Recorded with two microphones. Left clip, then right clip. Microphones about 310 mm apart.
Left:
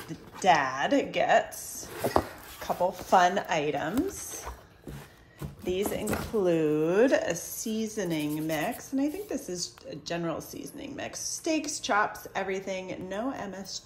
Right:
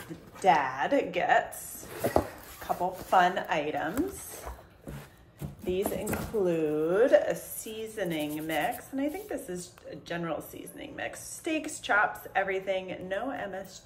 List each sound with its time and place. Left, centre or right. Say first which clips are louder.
0.4 s speech: left 1 dB; left
2.0 s a sound: even; centre
3.2 s speech: left 1 dB; left
5.7 s a woman's voice: left 1 dB; left